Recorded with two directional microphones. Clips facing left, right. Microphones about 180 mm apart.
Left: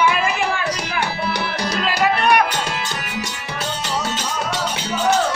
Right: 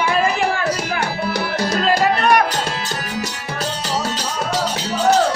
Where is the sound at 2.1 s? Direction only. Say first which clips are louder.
Right 1 dB; 40° right (ahead or behind).